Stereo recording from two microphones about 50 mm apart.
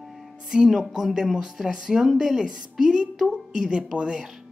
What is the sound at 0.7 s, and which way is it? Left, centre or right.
A woman's voice, centre.